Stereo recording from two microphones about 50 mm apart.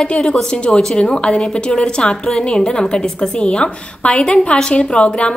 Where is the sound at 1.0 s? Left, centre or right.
Centre.